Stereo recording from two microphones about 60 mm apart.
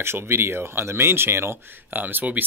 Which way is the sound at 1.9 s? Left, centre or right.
Right.